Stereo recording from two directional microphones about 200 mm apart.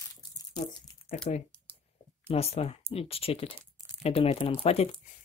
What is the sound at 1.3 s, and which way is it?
Speech, 35° left (ahead or behind).